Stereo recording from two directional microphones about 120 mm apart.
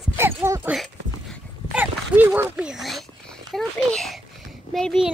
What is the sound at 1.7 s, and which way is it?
Speech, 15° right (ahead or behind).